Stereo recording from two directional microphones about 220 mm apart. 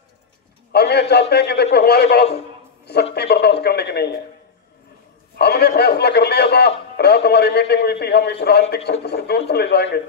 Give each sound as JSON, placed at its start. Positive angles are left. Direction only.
{"t": 0.7, "sound": "a sound", "side_deg": 50}
{"t": 1.3, "sound": "a man's voice", "side_deg": 50}
{"t": 5.4, "sound": "a man's voice", "side_deg": 45}